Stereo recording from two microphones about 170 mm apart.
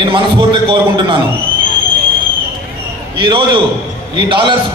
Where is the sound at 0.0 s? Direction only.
30° right (ahead or behind).